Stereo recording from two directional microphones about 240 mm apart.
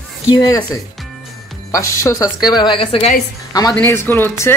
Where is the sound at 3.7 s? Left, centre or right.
Centre.